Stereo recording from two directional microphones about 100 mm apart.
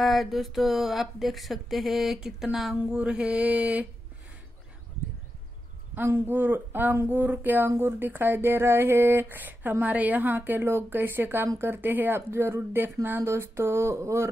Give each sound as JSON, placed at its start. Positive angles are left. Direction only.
{"t": 0.0, "sound": "speech", "side_deg": 0}
{"t": 5.9, "sound": "speech", "side_deg": -20}